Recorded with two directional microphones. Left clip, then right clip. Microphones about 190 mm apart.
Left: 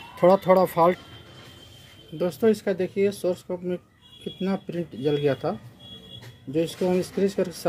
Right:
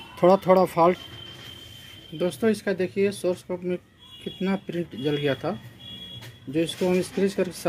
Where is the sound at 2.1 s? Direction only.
5° left (ahead or behind).